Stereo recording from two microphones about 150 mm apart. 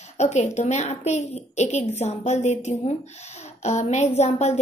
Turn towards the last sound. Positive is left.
turn(degrees=45)  # may be behind; listen again after turning